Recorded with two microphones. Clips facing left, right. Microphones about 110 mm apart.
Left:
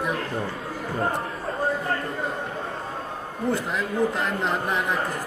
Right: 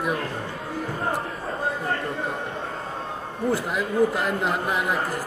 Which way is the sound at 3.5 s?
5° right (ahead or behind).